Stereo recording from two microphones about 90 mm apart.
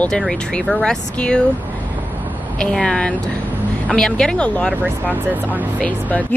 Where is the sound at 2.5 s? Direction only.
10° left (ahead or behind).